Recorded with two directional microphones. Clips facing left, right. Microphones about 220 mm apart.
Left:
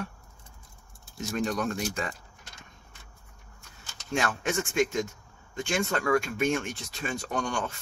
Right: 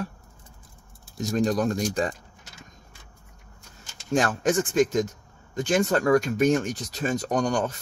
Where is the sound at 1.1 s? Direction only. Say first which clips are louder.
Right 6 dB; 35° right (ahead or behind).